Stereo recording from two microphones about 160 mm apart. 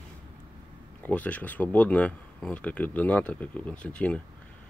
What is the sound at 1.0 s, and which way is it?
Speech, 10° left (ahead or behind).